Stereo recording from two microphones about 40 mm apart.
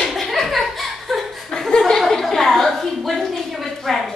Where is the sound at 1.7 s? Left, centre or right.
Centre.